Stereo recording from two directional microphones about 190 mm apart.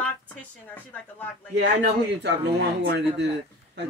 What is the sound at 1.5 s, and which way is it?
A man's voice, 65° right (ahead or behind).